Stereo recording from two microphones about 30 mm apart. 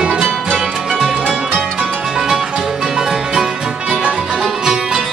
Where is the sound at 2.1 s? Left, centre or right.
Centre.